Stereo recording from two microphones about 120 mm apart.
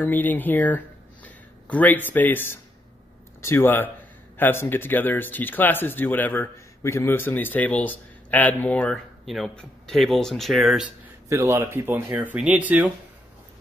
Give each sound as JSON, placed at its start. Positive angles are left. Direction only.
{"t": 0.0, "sound": "speech", "side_deg": 15}
{"t": 11.2, "sound": "speech", "side_deg": -25}